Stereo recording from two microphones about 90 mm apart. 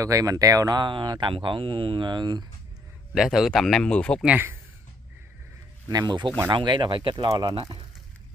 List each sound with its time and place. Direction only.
0.0 s speech: 40° right (ahead or behind)
0.7 s speech: 60° right (ahead or behind)
3.2 s speech: 5° right (ahead or behind)
4.2 s speech: 10° right (ahead or behind)
5.9 s speech: 50° right (ahead or behind); by 7.2 s 65° right (ahead or behind)
7.2 s speech: 45° right (ahead or behind)